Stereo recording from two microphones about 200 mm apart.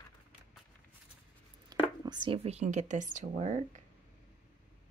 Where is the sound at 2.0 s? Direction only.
20° right (ahead or behind).